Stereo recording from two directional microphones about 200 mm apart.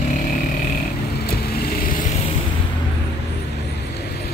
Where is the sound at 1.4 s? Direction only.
50° left (ahead or behind).